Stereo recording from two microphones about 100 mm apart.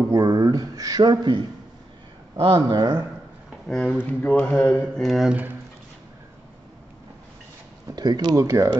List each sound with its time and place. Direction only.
0.1 s speech: 35° right (ahead or behind)
3.6 s speech: centre (ahead or behind)
4.0 s speech: 15° left (ahead or behind)
7.9 s speech: 45° right (ahead or behind)